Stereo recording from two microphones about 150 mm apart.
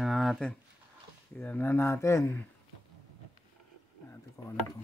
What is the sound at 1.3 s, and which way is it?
Speech, 10° left (ahead or behind).